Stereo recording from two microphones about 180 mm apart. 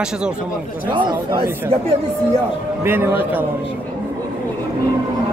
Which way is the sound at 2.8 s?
10° right (ahead or behind).